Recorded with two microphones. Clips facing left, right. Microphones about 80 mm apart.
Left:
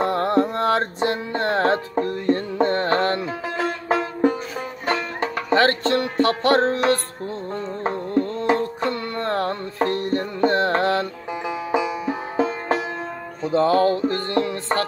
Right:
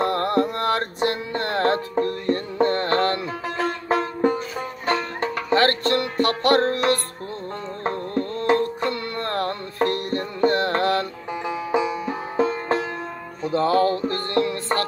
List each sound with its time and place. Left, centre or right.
0.0 s music: centre
5.2 s music: left
12.4 s music: centre
13.4 s speech: left